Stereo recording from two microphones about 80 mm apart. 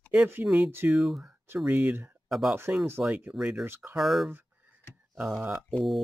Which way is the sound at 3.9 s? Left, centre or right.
Centre.